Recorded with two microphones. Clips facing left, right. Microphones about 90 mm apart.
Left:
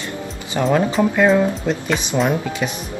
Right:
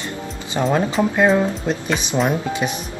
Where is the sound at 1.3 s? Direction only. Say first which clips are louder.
Left 2 dB; 20° right (ahead or behind).